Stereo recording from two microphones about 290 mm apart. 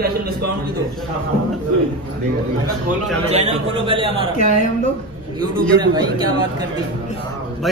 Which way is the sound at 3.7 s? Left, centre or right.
Centre.